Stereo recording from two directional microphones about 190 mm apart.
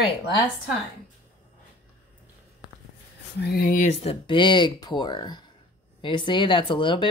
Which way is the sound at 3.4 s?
50° left (ahead or behind).